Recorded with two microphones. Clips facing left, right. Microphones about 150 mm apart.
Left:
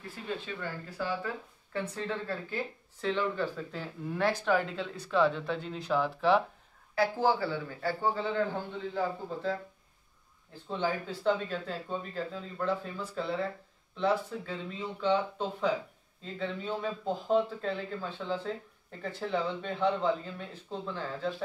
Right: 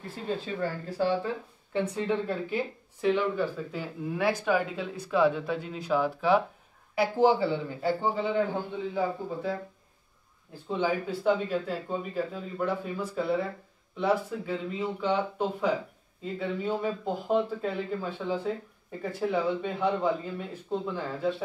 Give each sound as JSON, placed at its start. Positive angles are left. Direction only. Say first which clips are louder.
{"t": 0.0, "sound": "speech", "louder": "right 5 dB", "side_deg": -30}
{"t": 7.0, "sound": "speech", "louder": "right 4 dB", "side_deg": -20}
{"t": 10.8, "sound": "speech", "louder": "right 4 dB", "side_deg": -10}